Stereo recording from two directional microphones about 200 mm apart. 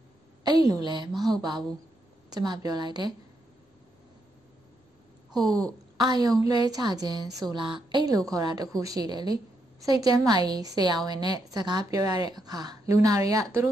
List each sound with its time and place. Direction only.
0.4 s a woman's voice: 20° right (ahead or behind)
5.3 s speech: centre (ahead or behind)
5.6 s a woman's voice: 20° right (ahead or behind)